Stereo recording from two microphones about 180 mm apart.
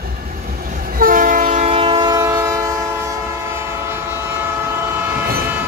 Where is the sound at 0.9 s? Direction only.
50° right (ahead or behind); by 2.6 s 20° right (ahead or behind).